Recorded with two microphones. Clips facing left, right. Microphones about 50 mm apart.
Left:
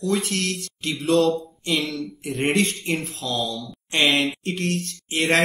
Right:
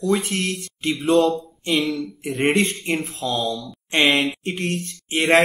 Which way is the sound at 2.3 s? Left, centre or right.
Right.